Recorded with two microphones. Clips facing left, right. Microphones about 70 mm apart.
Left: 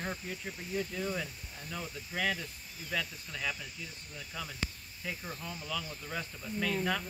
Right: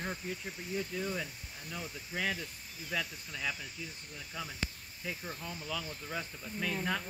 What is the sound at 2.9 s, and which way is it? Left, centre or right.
Speech, centre.